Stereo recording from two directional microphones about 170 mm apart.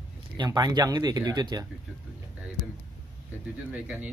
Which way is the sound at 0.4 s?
25° right (ahead or behind).